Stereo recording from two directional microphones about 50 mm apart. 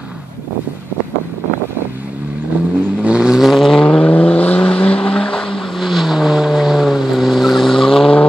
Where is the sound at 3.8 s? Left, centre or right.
Centre.